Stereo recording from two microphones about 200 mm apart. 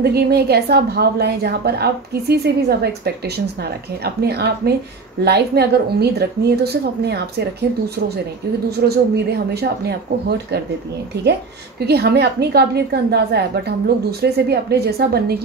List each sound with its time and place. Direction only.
0.0 s a woman's voice: 55° right (ahead or behind)
4.0 s a woman's voice: 55° right (ahead or behind)
8.8 s a woman's voice: 50° right (ahead or behind)
11.8 s a woman's voice: 55° right (ahead or behind)